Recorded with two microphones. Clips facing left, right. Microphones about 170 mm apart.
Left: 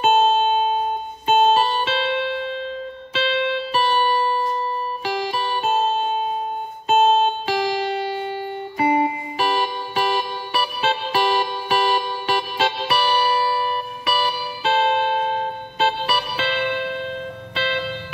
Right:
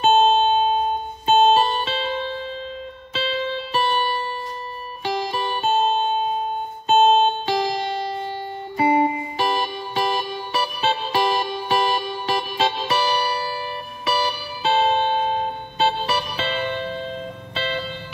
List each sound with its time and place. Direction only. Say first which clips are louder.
0.0 s music: right 1 dB; 35° right (ahead or behind)
3.2 s music: left 3 dB; 35° right (ahead or behind)
4.2 s music: left 8 dB; 35° left (ahead or behind)
5.0 s music: right 2 dB; 35° right (ahead or behind)
6.9 s music: right 1 dB; 30° right (ahead or behind)